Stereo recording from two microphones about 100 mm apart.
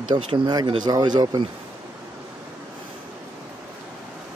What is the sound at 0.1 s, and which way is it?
Speech, 45° right (ahead or behind).